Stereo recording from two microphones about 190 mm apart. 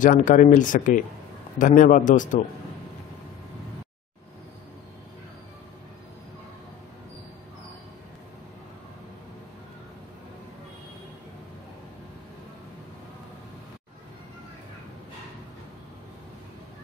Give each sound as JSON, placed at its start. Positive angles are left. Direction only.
{"t": 0.0, "sound": "speech", "side_deg": 45}